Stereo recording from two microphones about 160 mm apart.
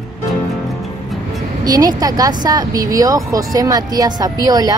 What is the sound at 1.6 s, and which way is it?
A woman's voice, 25° right (ahead or behind).